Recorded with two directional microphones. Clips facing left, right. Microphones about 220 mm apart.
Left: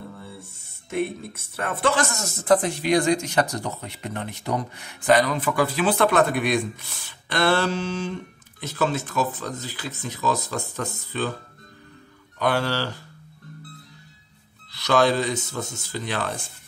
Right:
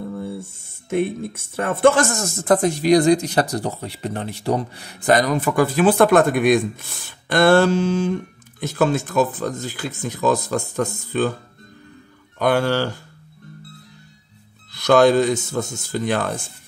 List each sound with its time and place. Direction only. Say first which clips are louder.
0.2 s speech: right 11 dB; 50° right (ahead or behind)
12.4 s speech: right 5 dB; 50° right (ahead or behind)
14.7 s speech: right 6 dB; 50° right (ahead or behind)